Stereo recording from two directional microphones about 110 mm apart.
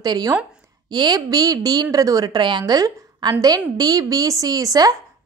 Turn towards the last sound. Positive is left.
turn(degrees=-35)  # may be behind; listen again after turning